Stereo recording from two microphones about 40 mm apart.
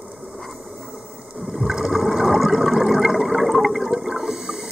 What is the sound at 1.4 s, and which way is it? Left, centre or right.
Water, centre.